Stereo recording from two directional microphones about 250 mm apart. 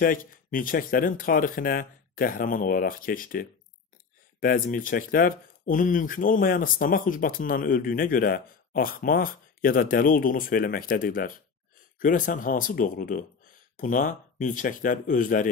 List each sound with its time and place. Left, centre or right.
0.0 s speech: left